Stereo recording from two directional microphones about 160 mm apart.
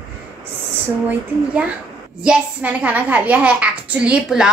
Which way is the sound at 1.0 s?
10° right (ahead or behind).